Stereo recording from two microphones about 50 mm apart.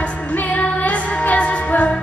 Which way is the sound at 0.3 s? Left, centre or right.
Left.